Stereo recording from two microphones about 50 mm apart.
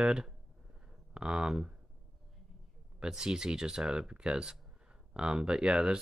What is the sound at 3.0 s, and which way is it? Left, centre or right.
Speech, centre.